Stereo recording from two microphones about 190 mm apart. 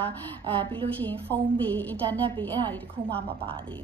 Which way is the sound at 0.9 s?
10° left (ahead or behind).